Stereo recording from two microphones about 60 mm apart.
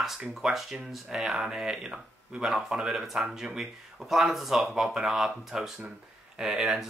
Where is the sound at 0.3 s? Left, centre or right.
Centre.